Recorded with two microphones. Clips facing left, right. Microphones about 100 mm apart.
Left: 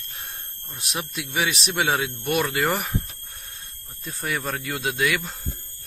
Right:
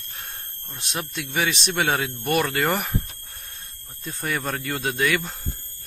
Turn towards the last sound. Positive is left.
turn(degrees=0)  # may be behind; listen again after turning